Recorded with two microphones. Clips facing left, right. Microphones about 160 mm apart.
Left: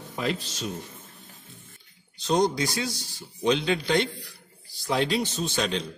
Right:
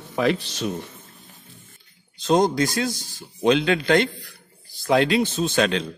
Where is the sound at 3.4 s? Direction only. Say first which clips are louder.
Right 5 dB; 85° right.